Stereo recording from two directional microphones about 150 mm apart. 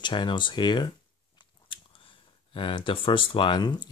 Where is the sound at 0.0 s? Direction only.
30° left (ahead or behind).